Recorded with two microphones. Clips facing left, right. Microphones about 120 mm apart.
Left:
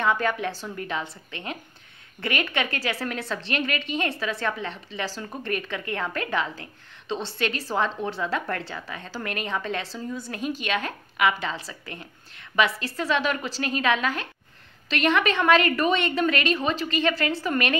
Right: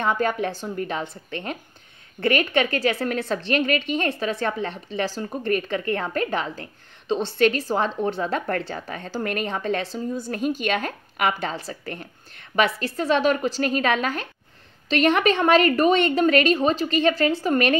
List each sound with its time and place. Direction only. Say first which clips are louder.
0.0 s a woman's voice: right 2 dB; 35° right (ahead or behind)
7.1 s a woman's voice: right 8 dB; 50° right (ahead or behind)